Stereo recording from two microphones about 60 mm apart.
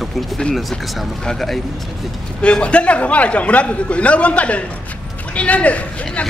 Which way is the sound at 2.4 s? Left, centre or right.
Centre.